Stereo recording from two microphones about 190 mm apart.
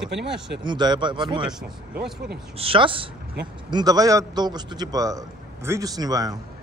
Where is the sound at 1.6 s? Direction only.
5° right (ahead or behind).